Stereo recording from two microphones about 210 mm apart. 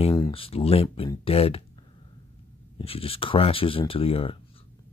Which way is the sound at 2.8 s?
25° left (ahead or behind).